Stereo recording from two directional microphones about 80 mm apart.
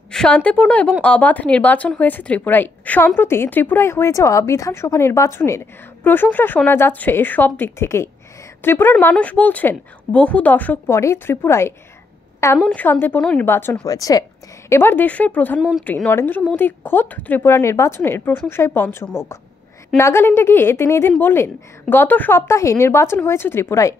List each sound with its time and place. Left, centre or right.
0.1 s a woman's voice: centre; by 5.6 s left
6.0 s a woman's voice: left
10.9 s speech: left
12.6 s a woman's voice: centre
13.5 s a woman's voice: left
13.8 s speech: left
14.7 s a woman's voice: left
22.5 s speech: left